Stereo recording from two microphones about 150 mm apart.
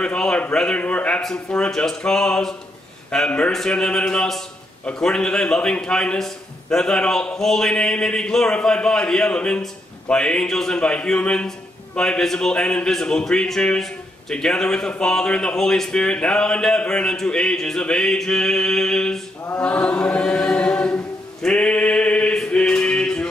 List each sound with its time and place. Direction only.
0.0 s a man's voice: 5° left (ahead or behind)